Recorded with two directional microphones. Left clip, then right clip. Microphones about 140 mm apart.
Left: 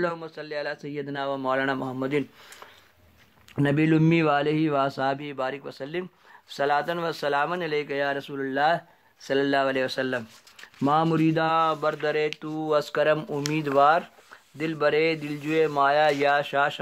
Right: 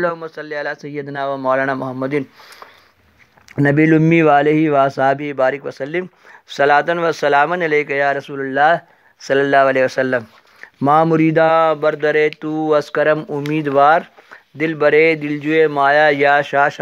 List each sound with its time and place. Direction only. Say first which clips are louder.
0.0 s speech: right 9 dB; 35° right (ahead or behind)